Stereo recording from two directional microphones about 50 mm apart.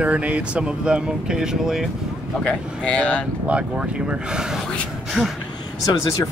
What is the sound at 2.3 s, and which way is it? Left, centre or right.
Speech, left.